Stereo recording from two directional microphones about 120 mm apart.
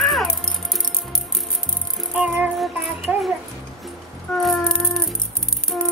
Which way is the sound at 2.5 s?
Centre (ahead or behind).